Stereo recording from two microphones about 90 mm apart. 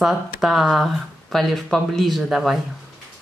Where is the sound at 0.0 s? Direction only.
5° right (ahead or behind).